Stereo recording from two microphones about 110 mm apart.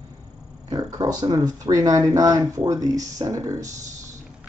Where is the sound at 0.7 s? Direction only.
35° right (ahead or behind).